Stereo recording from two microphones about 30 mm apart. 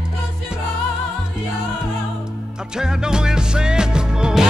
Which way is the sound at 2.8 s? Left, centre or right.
Right.